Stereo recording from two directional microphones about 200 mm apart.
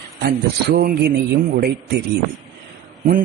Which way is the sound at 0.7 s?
50° right (ahead or behind).